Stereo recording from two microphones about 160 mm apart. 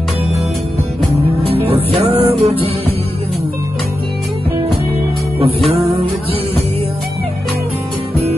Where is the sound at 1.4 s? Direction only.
35° right (ahead or behind).